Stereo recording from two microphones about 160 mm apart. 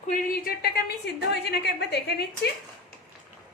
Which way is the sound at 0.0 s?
55° left (ahead or behind).